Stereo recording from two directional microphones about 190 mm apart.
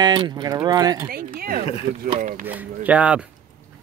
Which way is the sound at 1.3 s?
50° right (ahead or behind).